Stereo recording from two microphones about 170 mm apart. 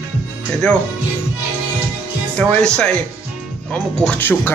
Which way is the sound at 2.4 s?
5° left (ahead or behind).